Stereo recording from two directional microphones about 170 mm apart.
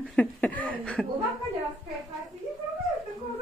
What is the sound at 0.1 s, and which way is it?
Speech, 10° left (ahead or behind).